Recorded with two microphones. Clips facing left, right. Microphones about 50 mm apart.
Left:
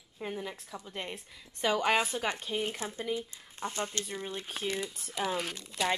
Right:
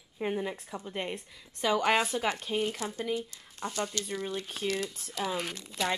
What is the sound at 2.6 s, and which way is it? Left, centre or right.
Speech, left.